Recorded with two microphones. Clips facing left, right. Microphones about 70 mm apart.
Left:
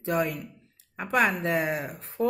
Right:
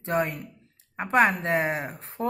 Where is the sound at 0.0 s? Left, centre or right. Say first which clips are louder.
Right 1 dB; right.